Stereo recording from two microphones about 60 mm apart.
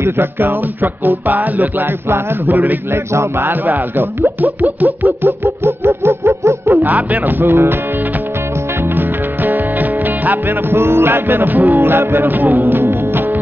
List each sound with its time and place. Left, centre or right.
0.2 s music: right
2.9 s chant: right
3.4 s music: right
6.9 s music: right
8.9 s music: right
10.8 s music: right